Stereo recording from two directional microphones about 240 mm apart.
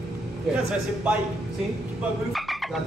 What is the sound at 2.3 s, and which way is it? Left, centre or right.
Frog, centre.